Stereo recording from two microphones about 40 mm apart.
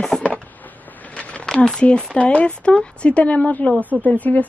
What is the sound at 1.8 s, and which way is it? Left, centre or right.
Speech, left.